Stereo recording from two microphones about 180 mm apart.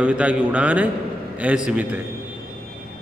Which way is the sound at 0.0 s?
5° right (ahead or behind).